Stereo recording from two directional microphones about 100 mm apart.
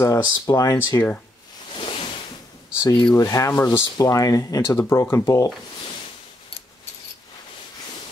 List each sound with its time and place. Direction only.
0.0 s speech: 30° left (ahead or behind)
1.7 s a sound: 65° left (ahead or behind)
2.8 s speech: 30° left (ahead or behind)